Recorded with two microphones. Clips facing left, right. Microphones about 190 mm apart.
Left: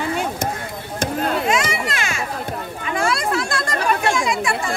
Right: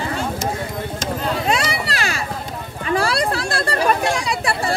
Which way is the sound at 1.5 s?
35° right (ahead or behind).